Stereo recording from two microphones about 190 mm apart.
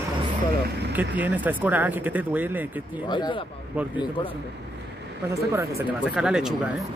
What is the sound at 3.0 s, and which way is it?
Speech, 25° left (ahead or behind).